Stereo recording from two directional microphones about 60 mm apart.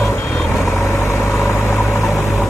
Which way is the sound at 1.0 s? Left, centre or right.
Left.